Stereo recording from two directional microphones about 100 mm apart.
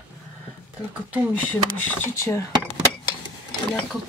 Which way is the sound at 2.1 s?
30° left (ahead or behind).